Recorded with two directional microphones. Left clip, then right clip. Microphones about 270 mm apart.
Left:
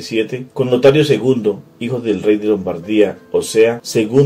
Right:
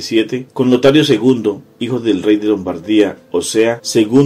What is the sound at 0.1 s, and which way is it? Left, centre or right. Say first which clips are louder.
Speech: right 3 dB; right.